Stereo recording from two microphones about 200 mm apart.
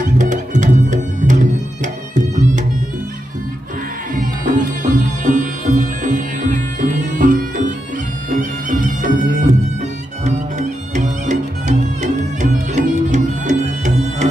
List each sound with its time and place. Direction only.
0.0 s music: 40° right (ahead or behind)
4.1 s music: 40° right (ahead or behind)
11.0 s music: 35° right (ahead or behind)